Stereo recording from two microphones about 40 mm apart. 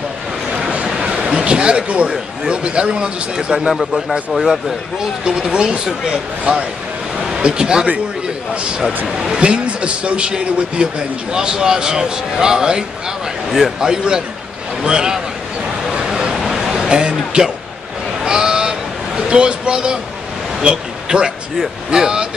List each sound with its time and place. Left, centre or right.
0.6 s vehicle: right
1.4 s a man's voice: right; by 4.7 s centre
5.4 s a man's voice: right
7.2 s speech: centre
9.3 s a man's voice: right
15.9 s vehicle: centre
16.3 s a sound: centre
16.8 s a man's voice: right
18.2 s a sound: centre
20.6 s a man's voice: right